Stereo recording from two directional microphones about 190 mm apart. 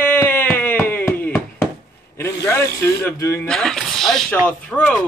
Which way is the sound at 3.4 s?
5° left (ahead or behind).